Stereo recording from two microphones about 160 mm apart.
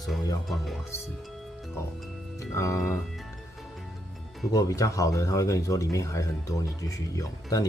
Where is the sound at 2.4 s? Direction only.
20° left (ahead or behind).